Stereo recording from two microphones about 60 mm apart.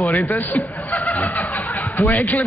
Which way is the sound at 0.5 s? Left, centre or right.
Left.